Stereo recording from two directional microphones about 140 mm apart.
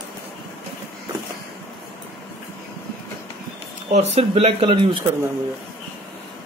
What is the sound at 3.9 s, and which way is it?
Speech, 50° right (ahead or behind).